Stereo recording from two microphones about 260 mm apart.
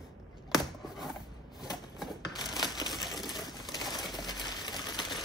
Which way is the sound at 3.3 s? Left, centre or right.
Centre.